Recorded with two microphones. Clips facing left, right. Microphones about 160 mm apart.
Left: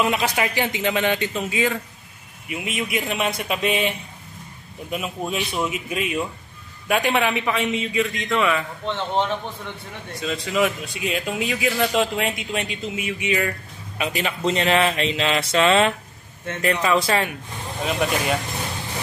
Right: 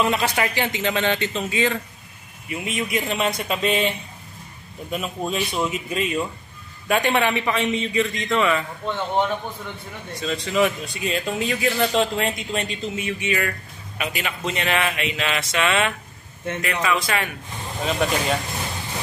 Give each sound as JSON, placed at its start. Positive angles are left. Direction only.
{"t": 0.0, "sound": "a man's voice", "side_deg": 10}
{"t": 4.9, "sound": "a man's voice", "side_deg": 5}
{"t": 10.2, "sound": "a man's voice", "side_deg": 5}
{"t": 13.9, "sound": "a man's voice", "side_deg": 30}
{"t": 17.8, "sound": "a man's voice", "side_deg": 5}